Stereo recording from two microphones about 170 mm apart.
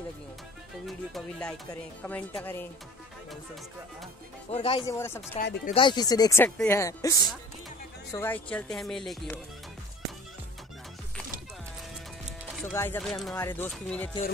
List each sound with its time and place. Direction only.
0.8 s speech: centre (ahead or behind)
4.5 s speech: 35° left (ahead or behind)
4.8 s speech: 15° left (ahead or behind)
5.7 s speech: 30° left (ahead or behind); by 9.2 s centre (ahead or behind)
12.6 s speech: 10° left (ahead or behind)
13.4 s speech: 10° left (ahead or behind)